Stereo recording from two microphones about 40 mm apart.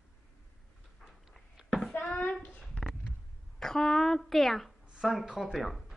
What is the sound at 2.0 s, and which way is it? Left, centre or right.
Hands, left.